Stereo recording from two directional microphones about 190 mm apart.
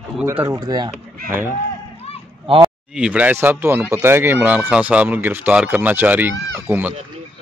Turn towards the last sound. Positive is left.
turn(degrees=-10)  # may be behind; listen again after turning